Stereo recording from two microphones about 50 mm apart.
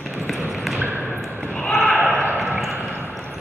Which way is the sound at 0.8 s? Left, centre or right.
Right.